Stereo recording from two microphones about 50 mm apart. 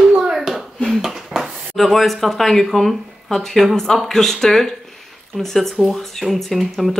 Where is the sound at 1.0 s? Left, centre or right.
Centre.